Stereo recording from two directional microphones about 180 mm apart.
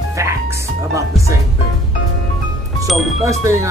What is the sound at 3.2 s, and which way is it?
Speech, 15° right (ahead or behind).